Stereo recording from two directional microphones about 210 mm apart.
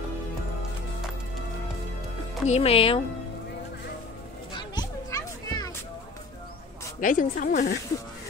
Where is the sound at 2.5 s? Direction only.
30° left (ahead or behind).